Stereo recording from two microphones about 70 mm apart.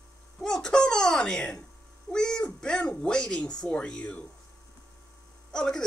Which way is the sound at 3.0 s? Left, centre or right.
Centre.